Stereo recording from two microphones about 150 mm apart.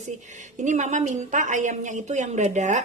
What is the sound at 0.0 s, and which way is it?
A woman's voice, 55° right (ahead or behind).